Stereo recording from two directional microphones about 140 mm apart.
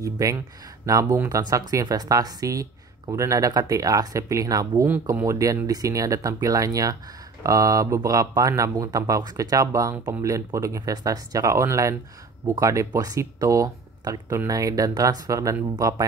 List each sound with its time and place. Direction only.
0.0 s speech: 25° right (ahead or behind)
4.8 s speech: 15° right (ahead or behind)
5.2 s speech: 25° right (ahead or behind)